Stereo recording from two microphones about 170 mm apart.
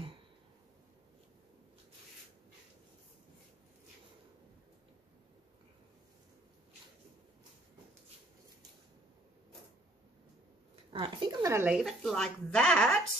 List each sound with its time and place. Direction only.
10.9 s speech: 30° right (ahead or behind)
11.5 s a woman's voice: 5° right (ahead or behind)